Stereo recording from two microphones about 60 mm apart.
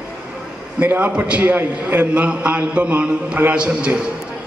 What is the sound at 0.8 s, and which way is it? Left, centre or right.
A man's voice, right.